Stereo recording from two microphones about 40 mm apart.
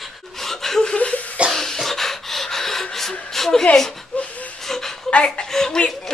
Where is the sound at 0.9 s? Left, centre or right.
Left.